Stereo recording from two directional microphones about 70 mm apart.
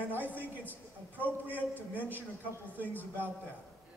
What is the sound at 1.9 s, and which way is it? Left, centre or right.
Speech, right.